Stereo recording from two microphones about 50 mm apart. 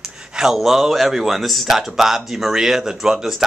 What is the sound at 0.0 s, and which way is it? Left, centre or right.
Speech, centre.